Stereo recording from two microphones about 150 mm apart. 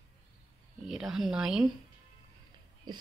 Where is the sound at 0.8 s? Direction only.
5° right (ahead or behind).